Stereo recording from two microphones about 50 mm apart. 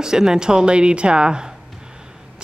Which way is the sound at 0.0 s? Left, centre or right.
Centre.